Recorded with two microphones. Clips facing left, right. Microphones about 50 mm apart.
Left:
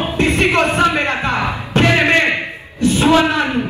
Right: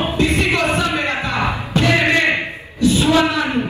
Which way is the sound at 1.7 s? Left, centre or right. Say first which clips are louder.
Left 3 dB; left.